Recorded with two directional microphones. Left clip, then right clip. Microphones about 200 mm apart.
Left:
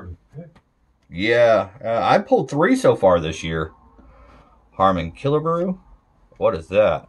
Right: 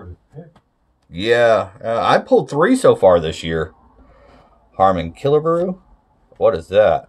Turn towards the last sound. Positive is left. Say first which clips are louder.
# right 4 dB
turn(degrees=-15)  # may be behind; listen again after turning